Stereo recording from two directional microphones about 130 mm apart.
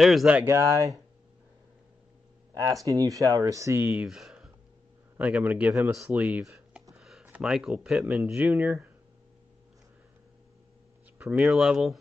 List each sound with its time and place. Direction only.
0.0 s speech: centre (ahead or behind)
0.4 s speech: 25° right (ahead or behind)
2.5 s speech: 25° right (ahead or behind)
4.0 s speech: 5° right (ahead or behind)
7.0 s a sound: 5° right (ahead or behind)
7.2 s speech: 10° right (ahead or behind)
11.1 s speech: 10° right (ahead or behind)